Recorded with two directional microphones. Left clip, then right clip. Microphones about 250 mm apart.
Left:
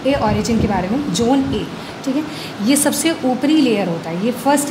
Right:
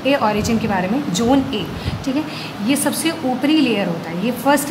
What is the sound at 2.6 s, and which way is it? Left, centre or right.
A woman's voice, left.